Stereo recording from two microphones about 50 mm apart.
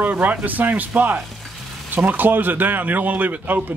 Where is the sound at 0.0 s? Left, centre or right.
Right.